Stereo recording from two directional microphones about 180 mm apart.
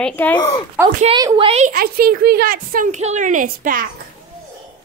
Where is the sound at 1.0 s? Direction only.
25° right (ahead or behind).